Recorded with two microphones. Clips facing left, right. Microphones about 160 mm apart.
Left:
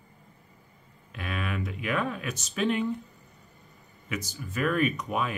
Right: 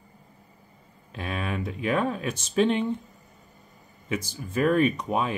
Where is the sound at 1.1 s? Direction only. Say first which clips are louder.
Right 2 dB; 30° right (ahead or behind).